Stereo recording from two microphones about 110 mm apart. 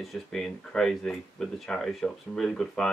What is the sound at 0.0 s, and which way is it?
Speech, 5° left (ahead or behind).